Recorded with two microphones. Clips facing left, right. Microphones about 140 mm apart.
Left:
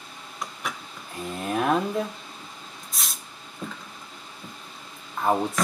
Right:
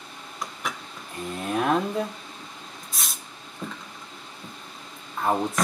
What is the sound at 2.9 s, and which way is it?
Vehicle, centre (ahead or behind).